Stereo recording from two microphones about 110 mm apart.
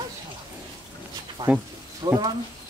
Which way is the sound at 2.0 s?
40° right (ahead or behind).